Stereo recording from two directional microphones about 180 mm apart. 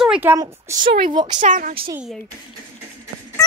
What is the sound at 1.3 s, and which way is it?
Speech, 40° right (ahead or behind).